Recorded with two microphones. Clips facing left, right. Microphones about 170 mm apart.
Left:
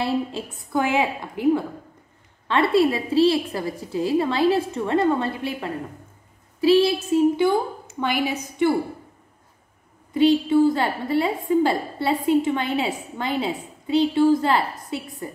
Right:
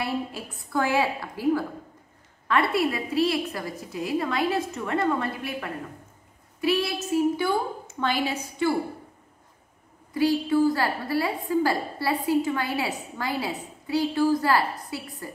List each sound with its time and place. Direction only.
0.0 s a woman's voice: 25° left (ahead or behind)
8.0 s a woman's voice: 15° left (ahead or behind)
10.1 s a woman's voice: 20° left (ahead or behind)